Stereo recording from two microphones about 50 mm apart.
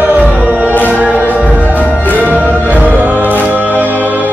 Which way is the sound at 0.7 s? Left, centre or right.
Left.